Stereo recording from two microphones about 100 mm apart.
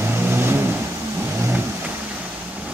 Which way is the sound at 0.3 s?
20° right (ahead or behind).